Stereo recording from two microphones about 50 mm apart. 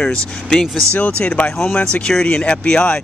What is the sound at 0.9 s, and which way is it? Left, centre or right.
Speech, left.